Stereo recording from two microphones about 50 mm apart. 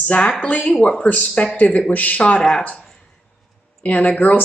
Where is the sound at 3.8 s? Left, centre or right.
Left.